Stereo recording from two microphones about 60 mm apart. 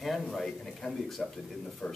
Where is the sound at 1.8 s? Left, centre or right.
Centre.